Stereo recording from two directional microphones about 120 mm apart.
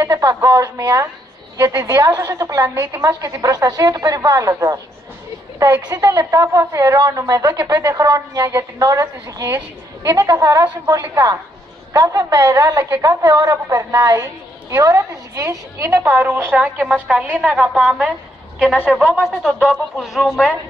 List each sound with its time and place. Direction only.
0.0 s a woman's voice: 25° right (ahead or behind); by 20.5 s centre (ahead or behind)